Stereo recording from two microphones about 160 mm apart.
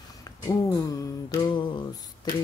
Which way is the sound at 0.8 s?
20° left (ahead or behind).